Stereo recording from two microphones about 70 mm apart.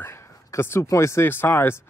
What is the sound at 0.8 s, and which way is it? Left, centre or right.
Speech, left.